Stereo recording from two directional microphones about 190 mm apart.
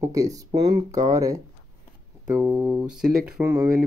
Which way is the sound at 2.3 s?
5° right (ahead or behind).